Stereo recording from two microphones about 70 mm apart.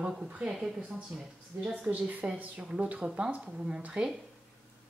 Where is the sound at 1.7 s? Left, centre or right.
Centre.